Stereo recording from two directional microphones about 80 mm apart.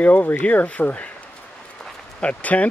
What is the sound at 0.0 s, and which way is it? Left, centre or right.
Speech, centre.